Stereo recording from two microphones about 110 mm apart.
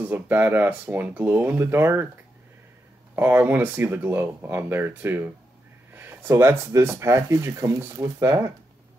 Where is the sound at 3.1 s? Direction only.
20° right (ahead or behind).